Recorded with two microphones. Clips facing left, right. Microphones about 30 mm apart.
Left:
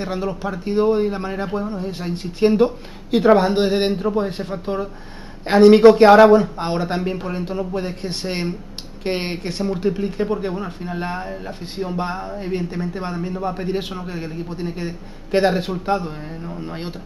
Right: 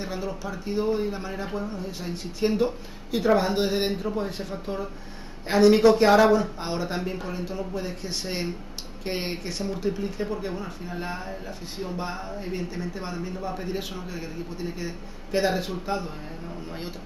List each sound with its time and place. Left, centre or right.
0.0 s speech: left
7.0 s speech: left
7.2 s speech: left